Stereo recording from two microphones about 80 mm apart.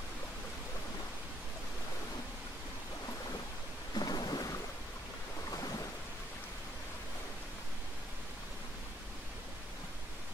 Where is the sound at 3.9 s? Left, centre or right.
Left.